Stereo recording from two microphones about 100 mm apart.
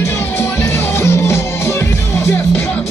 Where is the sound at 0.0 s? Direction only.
25° left (ahead or behind).